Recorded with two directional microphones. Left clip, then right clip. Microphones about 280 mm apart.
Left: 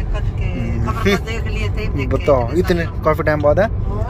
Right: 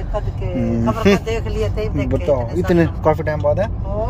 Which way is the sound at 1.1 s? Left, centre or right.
Centre.